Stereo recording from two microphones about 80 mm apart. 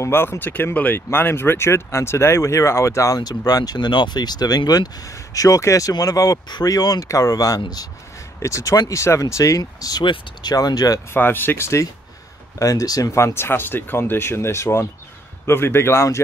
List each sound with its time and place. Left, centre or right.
0.0 s speech: left
8.4 s speech: left
11.1 s speech: left
12.5 s speech: left